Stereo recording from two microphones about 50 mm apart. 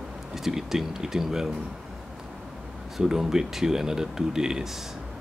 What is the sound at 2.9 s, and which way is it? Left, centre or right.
Speech, centre.